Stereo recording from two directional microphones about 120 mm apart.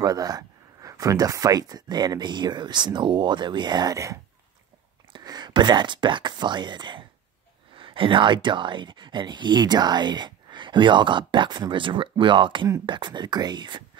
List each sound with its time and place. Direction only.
0.0 s speech: 30° right (ahead or behind)